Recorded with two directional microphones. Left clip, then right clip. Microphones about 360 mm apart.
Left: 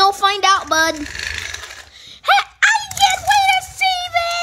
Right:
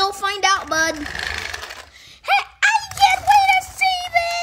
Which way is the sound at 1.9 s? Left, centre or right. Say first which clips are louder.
Left 4 dB; centre.